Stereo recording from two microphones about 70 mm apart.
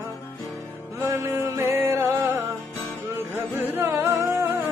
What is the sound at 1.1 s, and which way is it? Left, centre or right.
Music, right.